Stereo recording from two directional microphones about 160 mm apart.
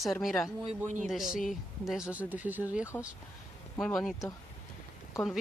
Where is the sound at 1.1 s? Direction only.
Centre (ahead or behind).